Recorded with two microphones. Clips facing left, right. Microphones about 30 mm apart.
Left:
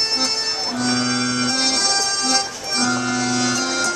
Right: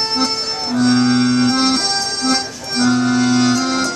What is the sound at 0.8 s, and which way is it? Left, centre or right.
Music, centre.